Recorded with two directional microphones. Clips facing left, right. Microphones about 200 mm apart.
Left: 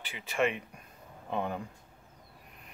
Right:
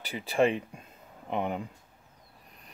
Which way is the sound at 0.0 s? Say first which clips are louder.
Right 5 dB; 35° right (ahead or behind).